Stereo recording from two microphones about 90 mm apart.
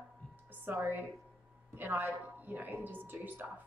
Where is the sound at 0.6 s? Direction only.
20° right (ahead or behind).